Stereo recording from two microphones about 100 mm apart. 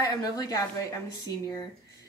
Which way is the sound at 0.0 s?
40° left (ahead or behind).